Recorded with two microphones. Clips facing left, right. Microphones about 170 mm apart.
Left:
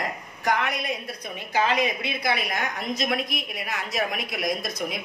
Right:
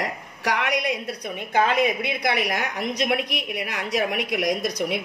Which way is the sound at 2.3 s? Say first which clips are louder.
Right 4 dB; 70° right (ahead or behind).